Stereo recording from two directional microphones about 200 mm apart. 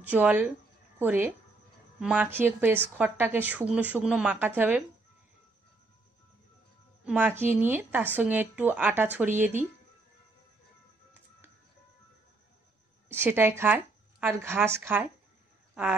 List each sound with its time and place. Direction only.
0.0 s speech: 5° right (ahead or behind)
7.1 s speech: 5° right (ahead or behind)
13.1 s speech: 10° right (ahead or behind)
15.7 s a sound: 5° right (ahead or behind)